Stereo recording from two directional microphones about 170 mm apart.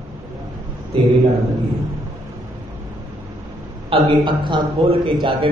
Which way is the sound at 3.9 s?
30° right (ahead or behind).